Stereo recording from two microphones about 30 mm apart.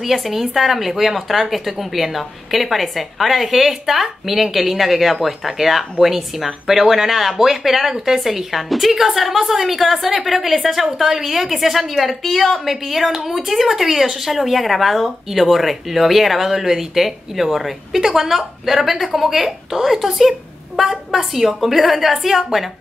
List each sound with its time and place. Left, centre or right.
0.3 s speech: centre
12.2 s speech: centre